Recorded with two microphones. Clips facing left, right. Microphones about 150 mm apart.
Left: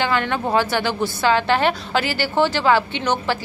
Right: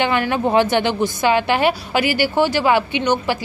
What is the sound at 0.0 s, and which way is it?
A woman's voice, 15° right (ahead or behind).